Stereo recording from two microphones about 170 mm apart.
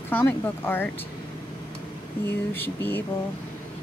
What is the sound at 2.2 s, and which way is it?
Speech, 10° left (ahead or behind).